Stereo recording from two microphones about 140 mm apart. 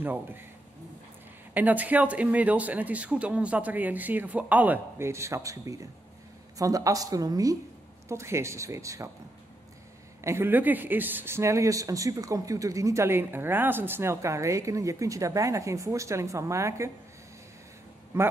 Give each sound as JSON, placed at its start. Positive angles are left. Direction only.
{"t": 0.0, "sound": "speech", "side_deg": -15}
{"t": 1.5, "sound": "speech", "side_deg": -10}
{"t": 10.2, "sound": "speech", "side_deg": -15}
{"t": 18.1, "sound": "speech", "side_deg": -15}